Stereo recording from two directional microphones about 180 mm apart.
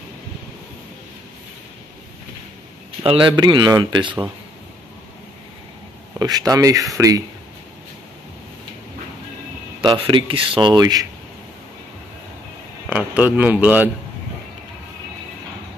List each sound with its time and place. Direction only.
3.0 s speech: 30° right (ahead or behind)
6.1 s speech: 20° right (ahead or behind)
9.8 s speech: 30° right (ahead or behind)
12.9 s a man's voice: 5° right (ahead or behind)